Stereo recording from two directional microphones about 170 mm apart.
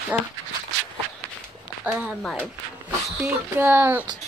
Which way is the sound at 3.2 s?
10° right (ahead or behind).